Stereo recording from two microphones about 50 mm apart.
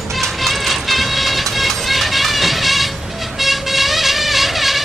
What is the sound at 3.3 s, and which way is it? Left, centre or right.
Vehicle, centre.